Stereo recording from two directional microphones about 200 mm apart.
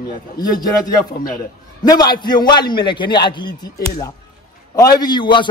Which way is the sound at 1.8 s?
20° left (ahead or behind).